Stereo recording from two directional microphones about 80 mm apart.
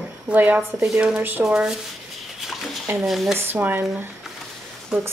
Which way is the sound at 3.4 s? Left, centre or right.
Right.